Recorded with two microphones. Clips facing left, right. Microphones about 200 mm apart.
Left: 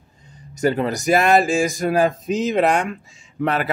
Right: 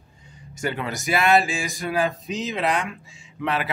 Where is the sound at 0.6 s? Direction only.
40° left (ahead or behind).